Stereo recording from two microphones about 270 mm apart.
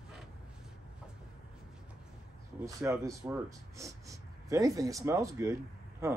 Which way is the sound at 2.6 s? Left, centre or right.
Centre.